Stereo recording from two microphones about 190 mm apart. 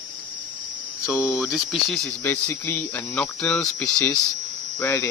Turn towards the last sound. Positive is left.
turn(degrees=10)  # may be behind; listen again after turning